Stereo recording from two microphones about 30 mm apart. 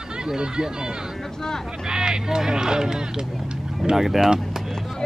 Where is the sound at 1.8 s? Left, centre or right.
Right.